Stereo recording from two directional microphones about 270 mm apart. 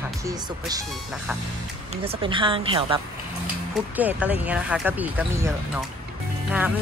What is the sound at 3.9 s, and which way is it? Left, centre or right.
Speech, centre.